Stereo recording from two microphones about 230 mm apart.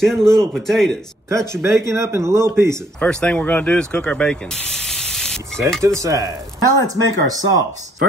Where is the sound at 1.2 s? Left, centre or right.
Centre.